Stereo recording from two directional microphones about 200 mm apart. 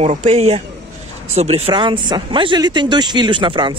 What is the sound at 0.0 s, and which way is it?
Speech, 35° right (ahead or behind).